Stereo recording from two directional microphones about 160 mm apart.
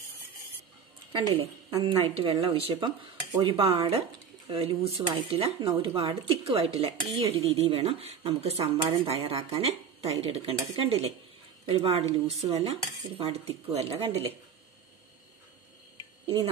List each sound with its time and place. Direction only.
1.1 s a woman's voice: 35° right (ahead or behind)
2.0 s speech: 35° right (ahead or behind)